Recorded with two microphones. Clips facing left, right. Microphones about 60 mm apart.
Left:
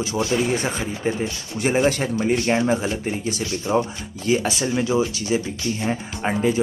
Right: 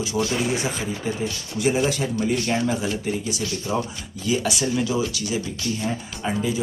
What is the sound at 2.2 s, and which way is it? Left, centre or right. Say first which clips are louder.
Speech: left 3 dB; left.